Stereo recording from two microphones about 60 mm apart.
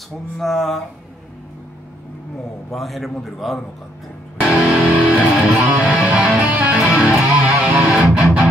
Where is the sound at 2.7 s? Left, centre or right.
Centre.